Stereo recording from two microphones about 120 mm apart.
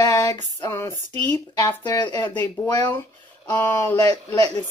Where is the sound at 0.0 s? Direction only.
30° left (ahead or behind).